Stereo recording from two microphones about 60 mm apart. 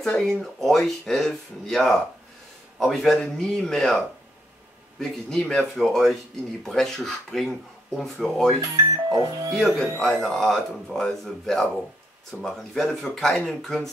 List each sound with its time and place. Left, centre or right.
0.0 s speech: centre
8.5 s speech: right
9.5 s speech: centre